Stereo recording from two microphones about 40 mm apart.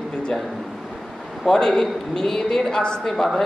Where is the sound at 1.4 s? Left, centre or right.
Centre.